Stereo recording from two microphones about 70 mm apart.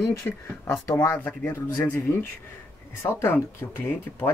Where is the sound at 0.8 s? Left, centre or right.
Left.